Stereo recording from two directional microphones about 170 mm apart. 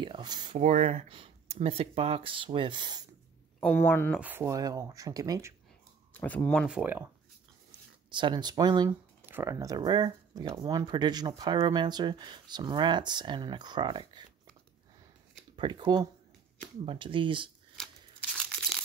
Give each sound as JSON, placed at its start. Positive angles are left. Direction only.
{"t": 0.0, "sound": "speech", "side_deg": -25}
{"t": 0.6, "sound": "speech", "side_deg": -45}
{"t": 3.6, "sound": "speech", "side_deg": 10}
{"t": 4.2, "sound": "speech", "side_deg": -10}
{"t": 6.1, "sound": "speech", "side_deg": 10}
{"t": 6.7, "sound": "speech", "side_deg": -10}
{"t": 8.1, "sound": "speech", "side_deg": -25}
{"t": 9.2, "sound": "speech", "side_deg": -15}
{"t": 15.5, "sound": "speech", "side_deg": -30}
{"t": 17.8, "sound": "scissors", "side_deg": 5}